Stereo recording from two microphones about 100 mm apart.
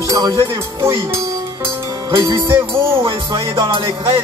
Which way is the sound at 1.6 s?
25° right (ahead or behind).